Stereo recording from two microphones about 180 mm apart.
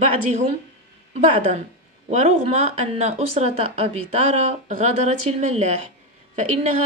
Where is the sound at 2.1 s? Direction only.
35° right (ahead or behind).